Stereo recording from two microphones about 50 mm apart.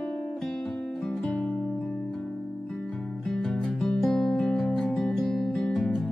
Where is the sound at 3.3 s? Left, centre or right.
Centre.